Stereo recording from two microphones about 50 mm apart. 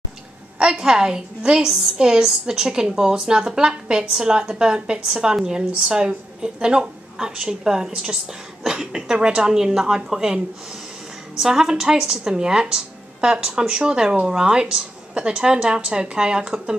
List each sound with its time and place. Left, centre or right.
0.6 s a woman's voice: centre